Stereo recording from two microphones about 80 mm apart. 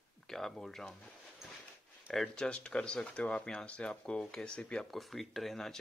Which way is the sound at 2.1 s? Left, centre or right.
Centre.